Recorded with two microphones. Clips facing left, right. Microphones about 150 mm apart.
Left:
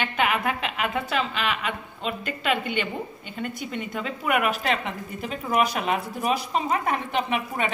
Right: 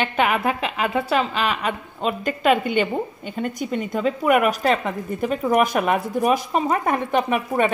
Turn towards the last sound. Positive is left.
turn(degrees=-45)  # may be behind; listen again after turning